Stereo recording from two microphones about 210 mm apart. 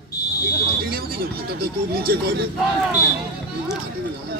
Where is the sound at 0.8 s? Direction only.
45° right (ahead or behind).